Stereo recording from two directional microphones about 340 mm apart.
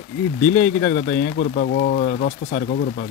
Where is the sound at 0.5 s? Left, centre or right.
Left.